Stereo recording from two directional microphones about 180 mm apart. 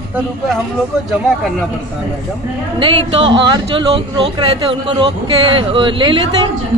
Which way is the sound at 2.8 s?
30° right (ahead or behind).